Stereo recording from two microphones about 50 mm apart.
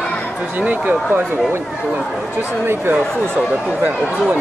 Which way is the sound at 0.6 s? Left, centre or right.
Right.